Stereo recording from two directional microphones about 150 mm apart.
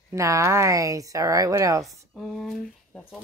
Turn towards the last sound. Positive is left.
turn(degrees=5)  # may be behind; listen again after turning